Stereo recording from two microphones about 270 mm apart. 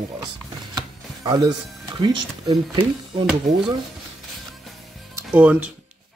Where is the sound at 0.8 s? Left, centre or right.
Centre.